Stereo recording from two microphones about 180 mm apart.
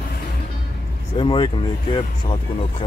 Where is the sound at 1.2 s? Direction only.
30° left (ahead or behind).